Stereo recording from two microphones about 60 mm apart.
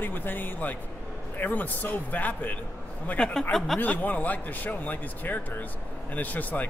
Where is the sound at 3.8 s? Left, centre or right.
Left.